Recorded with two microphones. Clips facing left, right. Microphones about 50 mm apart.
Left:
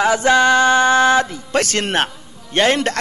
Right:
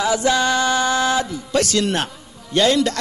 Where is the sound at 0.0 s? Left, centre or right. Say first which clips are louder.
Left 4 dB; left.